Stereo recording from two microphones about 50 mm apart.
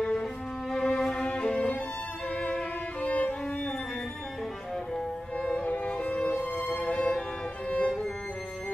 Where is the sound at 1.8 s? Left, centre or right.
Left.